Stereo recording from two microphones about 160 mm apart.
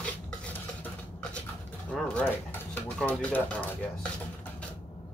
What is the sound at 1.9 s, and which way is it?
Pigeon, 10° left (ahead or behind).